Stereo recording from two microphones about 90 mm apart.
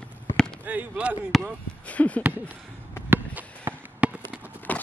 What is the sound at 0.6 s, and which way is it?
Speech, 15° right (ahead or behind).